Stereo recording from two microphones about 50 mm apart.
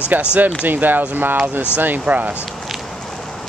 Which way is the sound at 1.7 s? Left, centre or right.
Right.